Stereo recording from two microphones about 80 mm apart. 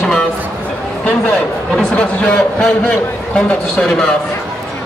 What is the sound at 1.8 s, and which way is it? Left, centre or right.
A man's voice, centre.